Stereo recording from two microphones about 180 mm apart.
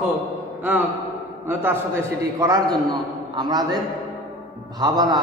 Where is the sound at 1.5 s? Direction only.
10° right (ahead or behind).